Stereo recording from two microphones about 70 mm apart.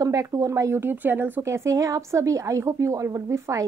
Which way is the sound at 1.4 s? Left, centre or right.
Right.